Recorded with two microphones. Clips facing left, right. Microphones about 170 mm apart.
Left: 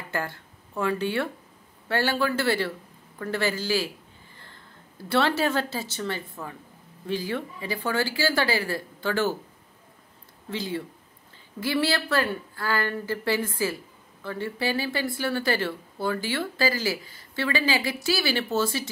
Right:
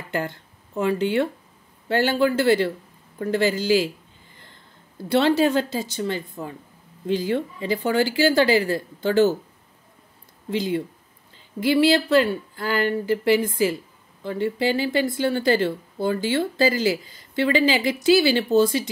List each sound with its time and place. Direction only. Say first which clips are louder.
0.1 s speech: right 4 dB; 20° right (ahead or behind)
4.9 s speech: right 5 dB; 20° right (ahead or behind)
10.5 s speech: right 7 dB; 15° right (ahead or behind)